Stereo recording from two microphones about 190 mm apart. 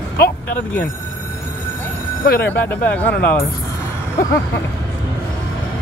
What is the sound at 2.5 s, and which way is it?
Speech, 10° left (ahead or behind).